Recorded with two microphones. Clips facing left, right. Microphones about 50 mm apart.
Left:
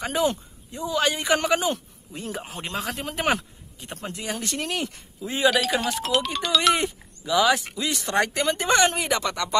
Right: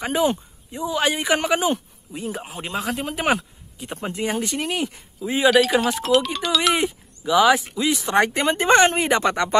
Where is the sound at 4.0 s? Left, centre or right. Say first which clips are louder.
Right 7 dB; right.